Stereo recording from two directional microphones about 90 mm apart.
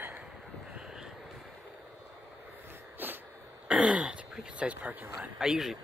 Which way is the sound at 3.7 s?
5° right (ahead or behind).